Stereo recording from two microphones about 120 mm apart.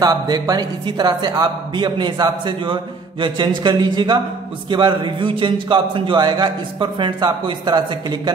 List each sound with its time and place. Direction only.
0.0 s speech: 35° right (ahead or behind)